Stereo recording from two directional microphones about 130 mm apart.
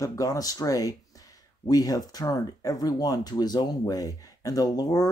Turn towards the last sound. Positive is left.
turn(degrees=30)  # may be behind; listen again after turning